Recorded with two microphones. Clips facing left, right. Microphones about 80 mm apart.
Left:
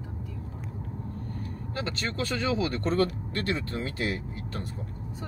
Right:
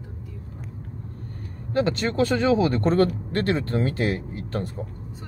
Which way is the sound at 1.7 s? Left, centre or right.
Right.